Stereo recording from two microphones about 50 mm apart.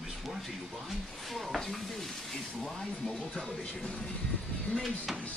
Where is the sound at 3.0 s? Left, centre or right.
Centre.